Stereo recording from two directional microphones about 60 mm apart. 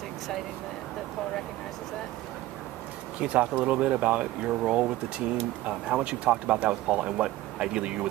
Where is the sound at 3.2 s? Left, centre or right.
Right.